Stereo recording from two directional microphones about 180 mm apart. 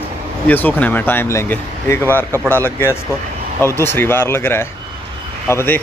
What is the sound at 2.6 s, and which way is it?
Speech, 15° left (ahead or behind).